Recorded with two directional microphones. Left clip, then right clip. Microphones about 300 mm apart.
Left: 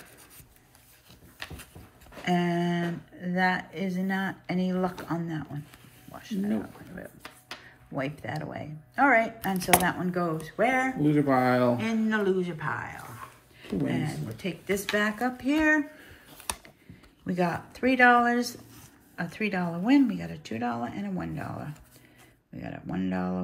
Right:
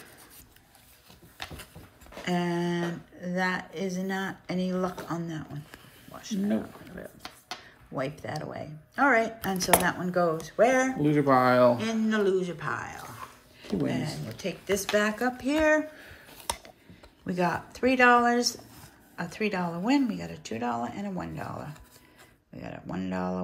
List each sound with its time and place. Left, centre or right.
2.2 s speech: centre
7.9 s a woman's voice: centre
11.0 s a woman's voice: centre
11.8 s a woman's voice: centre
17.3 s speech: centre